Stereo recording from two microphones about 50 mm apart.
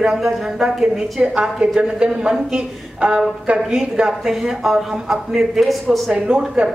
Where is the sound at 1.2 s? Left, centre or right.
Right.